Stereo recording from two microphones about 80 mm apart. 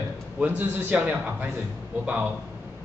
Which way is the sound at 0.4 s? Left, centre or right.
Centre.